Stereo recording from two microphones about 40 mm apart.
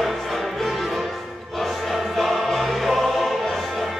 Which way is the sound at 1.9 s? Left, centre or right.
Centre.